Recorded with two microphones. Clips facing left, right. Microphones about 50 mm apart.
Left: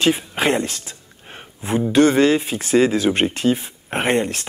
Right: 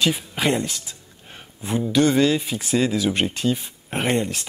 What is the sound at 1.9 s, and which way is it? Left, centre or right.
Speech, left.